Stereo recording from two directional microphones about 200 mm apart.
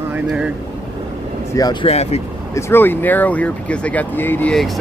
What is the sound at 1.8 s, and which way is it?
Speech, 30° left (ahead or behind).